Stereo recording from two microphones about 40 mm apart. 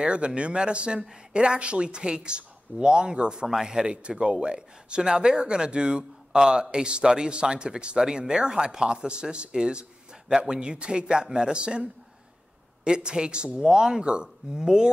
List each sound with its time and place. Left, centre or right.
0.0 s speech: right